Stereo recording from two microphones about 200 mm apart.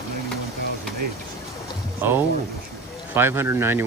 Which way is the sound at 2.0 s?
10° right (ahead or behind).